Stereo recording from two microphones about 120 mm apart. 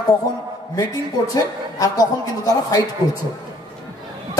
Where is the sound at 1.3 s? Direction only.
30° left (ahead or behind).